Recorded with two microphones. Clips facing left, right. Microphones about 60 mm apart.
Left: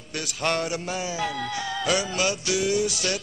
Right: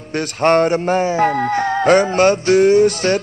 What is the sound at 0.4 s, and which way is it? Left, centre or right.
Music, right.